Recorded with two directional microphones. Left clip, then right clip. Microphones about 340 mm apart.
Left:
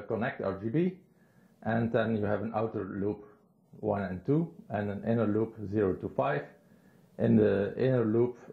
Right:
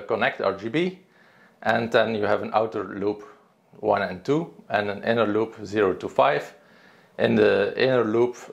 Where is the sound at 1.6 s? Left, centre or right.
Centre.